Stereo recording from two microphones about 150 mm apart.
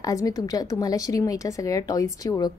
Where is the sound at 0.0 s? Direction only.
25° left (ahead or behind).